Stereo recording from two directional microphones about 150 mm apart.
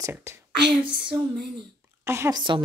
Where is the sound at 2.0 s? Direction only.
20° right (ahead or behind).